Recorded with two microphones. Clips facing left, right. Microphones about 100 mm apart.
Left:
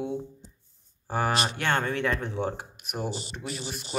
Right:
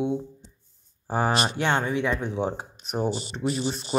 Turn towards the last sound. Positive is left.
turn(degrees=-35)  # may be behind; listen again after turning